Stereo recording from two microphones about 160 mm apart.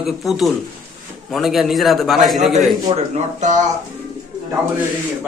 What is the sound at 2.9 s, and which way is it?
Speech, 50° right (ahead or behind).